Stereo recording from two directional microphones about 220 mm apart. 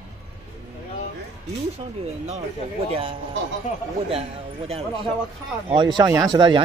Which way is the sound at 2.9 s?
25° right (ahead or behind).